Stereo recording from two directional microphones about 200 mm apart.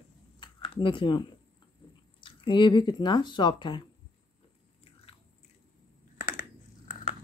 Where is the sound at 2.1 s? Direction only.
25° left (ahead or behind).